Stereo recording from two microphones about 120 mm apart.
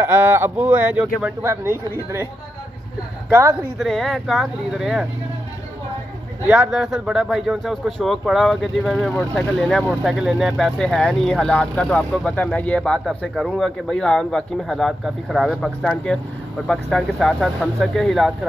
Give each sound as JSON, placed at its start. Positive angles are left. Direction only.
{"t": 0.0, "sound": "speech", "side_deg": -15}
{"t": 3.3, "sound": "speech", "side_deg": -20}
{"t": 3.7, "sound": "speech", "side_deg": 0}
{"t": 6.5, "sound": "speech", "side_deg": -5}